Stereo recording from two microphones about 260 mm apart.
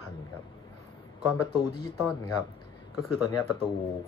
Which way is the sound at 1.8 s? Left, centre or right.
Centre.